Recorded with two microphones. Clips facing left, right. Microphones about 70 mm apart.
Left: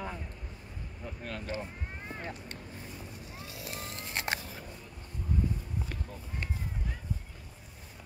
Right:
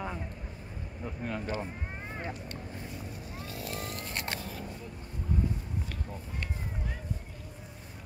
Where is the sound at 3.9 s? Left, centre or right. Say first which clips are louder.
Left 1 dB; centre.